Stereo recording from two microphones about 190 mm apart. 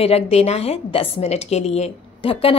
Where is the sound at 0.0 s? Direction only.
30° left (ahead or behind).